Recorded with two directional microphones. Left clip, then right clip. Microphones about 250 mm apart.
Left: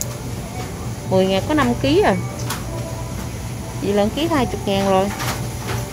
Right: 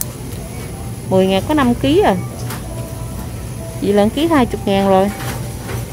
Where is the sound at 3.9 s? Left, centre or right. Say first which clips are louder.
Right 5 dB; right.